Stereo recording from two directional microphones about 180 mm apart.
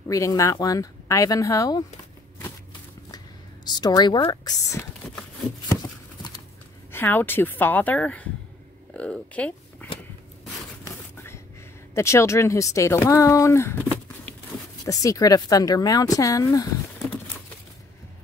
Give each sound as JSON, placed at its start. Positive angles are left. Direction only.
{"t": 0.1, "sound": "speech", "side_deg": 20}
{"t": 3.6, "sound": "speech", "side_deg": 25}
{"t": 5.7, "sound": "a sound", "side_deg": 20}
{"t": 6.9, "sound": "speech", "side_deg": 10}
{"t": 11.9, "sound": "speech", "side_deg": 15}
{"t": 14.9, "sound": "speech", "side_deg": 20}